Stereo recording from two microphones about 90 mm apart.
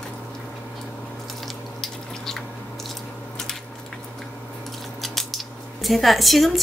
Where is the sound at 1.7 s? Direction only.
5° left (ahead or behind).